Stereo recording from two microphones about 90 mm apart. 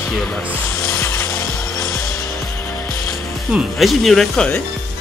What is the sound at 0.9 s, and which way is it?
Music, 25° left (ahead or behind).